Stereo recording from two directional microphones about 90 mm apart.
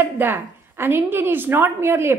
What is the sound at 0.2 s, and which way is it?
Speech, 25° right (ahead or behind).